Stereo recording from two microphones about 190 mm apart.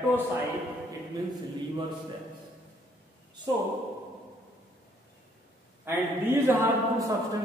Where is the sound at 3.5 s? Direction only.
20° right (ahead or behind).